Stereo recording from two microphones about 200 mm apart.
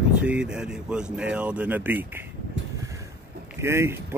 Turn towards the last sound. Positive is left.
turn(degrees=-10)  # may be behind; listen again after turning